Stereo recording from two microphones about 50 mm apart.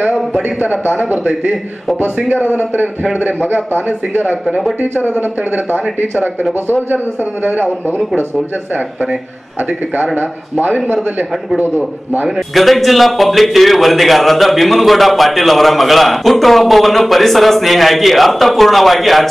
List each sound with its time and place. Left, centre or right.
0.6 s a man's voice: right
2.4 s a man's voice: right
4.1 s a man's voice: right
11.6 s a man's voice: right
12.5 s a man's voice: centre